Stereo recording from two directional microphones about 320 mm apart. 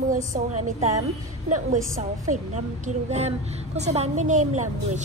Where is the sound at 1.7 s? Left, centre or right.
Right.